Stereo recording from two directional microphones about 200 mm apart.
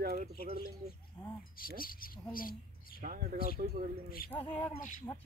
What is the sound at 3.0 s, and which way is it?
Speech, 40° right (ahead or behind).